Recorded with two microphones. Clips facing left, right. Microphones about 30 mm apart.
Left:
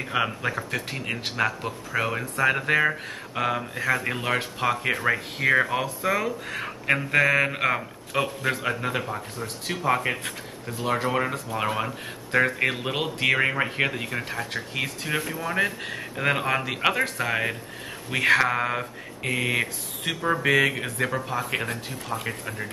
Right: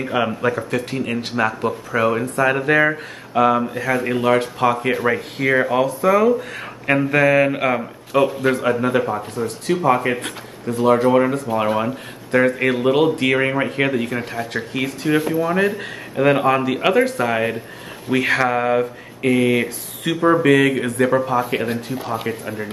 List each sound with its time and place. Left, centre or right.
0.0 s speech: centre
9.4 s speech: right
9.8 s speech: centre